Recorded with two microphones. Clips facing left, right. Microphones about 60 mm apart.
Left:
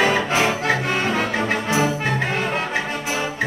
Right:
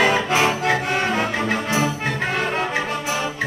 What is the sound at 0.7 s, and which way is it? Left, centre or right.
Music, right.